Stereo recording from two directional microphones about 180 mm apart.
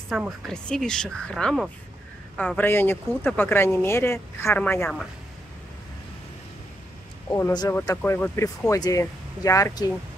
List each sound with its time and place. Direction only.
0.1 s speech: centre (ahead or behind)
2.3 s speech: 10° left (ahead or behind)
7.2 s speech: 20° left (ahead or behind)